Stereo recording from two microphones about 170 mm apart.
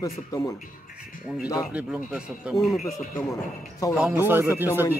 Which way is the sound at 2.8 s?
20° left (ahead or behind).